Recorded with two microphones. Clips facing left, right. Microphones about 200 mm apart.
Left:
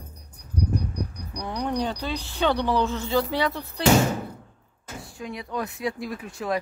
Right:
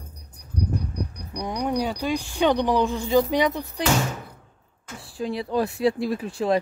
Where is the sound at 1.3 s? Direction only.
15° right (ahead or behind).